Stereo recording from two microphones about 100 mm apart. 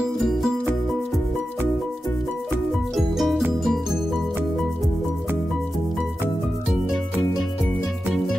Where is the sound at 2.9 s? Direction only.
Centre (ahead or behind).